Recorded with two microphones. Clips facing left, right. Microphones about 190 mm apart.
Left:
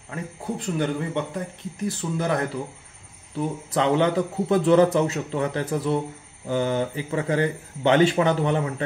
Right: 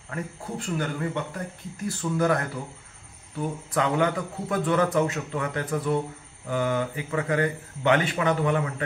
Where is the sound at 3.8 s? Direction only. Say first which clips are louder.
Left 4 dB; 25° left (ahead or behind).